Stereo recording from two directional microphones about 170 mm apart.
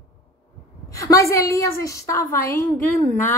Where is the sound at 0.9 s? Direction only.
20° left (ahead or behind).